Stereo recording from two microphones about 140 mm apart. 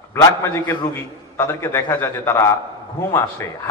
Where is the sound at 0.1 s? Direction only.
20° left (ahead or behind).